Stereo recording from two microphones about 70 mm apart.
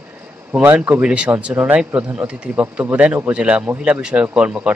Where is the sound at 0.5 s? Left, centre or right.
Right.